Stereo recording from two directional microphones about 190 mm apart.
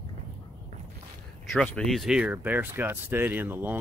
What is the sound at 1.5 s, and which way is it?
Speech, 5° left (ahead or behind).